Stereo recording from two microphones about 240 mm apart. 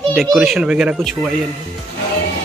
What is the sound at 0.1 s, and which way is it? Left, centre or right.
A man's voice, centre.